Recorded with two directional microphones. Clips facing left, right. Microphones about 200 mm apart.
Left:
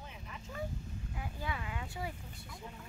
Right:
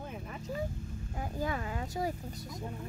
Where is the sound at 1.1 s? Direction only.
40° right (ahead or behind).